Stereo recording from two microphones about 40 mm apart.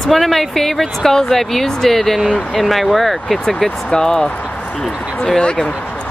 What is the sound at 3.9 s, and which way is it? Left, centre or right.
Speech, centre.